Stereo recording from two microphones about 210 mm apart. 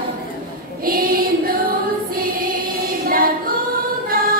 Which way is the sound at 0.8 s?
45° right (ahead or behind).